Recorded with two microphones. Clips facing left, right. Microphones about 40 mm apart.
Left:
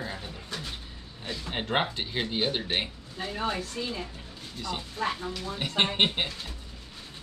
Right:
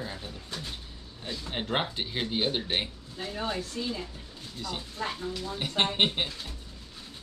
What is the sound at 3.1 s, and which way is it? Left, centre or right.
Speech, left.